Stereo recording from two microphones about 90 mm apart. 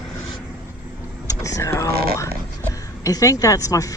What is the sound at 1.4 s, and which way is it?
Speech, 35° left (ahead or behind).